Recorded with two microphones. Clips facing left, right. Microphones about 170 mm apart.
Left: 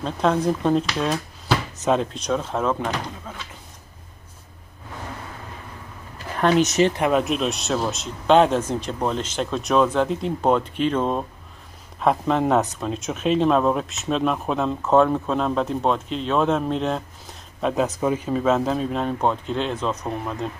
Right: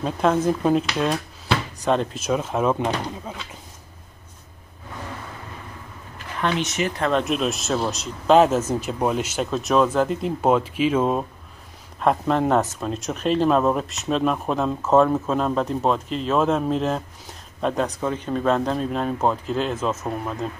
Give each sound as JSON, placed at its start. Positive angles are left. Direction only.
{"t": 0.0, "sound": "speech", "side_deg": -5}
{"t": 6.4, "sound": "speech", "side_deg": 40}
{"t": 7.0, "sound": "speech", "side_deg": 5}